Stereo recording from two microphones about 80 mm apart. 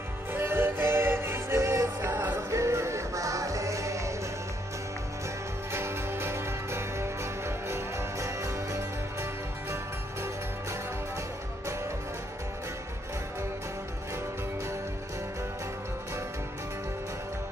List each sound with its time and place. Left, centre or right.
0.3 s music: right
5.7 s music: right